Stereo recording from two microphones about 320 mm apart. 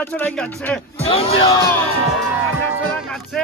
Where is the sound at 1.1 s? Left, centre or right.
Centre.